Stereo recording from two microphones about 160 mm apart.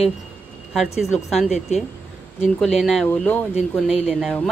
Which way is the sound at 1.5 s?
45° left (ahead or behind).